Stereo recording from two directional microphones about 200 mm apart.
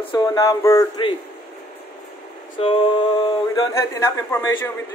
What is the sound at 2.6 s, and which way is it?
Speech, 30° left (ahead or behind).